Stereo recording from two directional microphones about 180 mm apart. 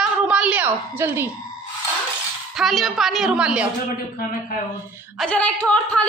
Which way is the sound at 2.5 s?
Centre (ahead or behind).